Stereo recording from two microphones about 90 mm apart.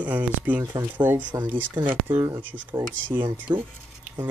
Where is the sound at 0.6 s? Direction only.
40° right (ahead or behind).